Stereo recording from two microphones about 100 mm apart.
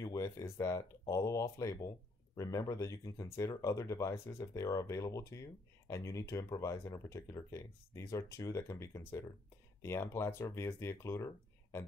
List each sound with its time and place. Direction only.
0.0 s speech: 35° left (ahead or behind)